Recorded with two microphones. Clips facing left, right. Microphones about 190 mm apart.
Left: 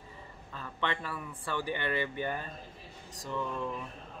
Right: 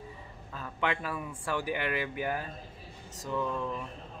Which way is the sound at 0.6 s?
10° right (ahead or behind).